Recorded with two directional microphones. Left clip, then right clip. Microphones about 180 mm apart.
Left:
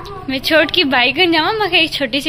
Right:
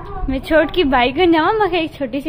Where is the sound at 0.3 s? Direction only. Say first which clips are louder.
Left 2 dB; 10° right (ahead or behind).